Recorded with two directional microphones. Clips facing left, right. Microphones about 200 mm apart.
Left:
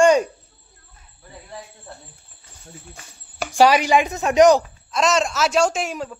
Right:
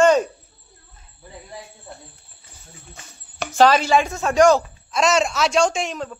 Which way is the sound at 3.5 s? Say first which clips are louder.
Even; 15° left (ahead or behind).